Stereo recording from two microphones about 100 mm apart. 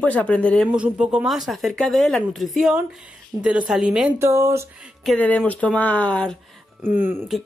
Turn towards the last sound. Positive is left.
turn(degrees=-20)  # may be behind; listen again after turning